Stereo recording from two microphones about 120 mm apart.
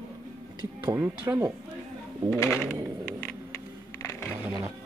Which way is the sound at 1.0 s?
20° right (ahead or behind).